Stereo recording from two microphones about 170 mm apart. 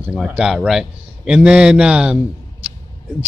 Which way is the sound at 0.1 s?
5° right (ahead or behind).